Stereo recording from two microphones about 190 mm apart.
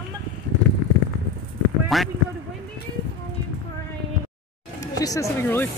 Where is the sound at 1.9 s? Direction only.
Centre (ahead or behind).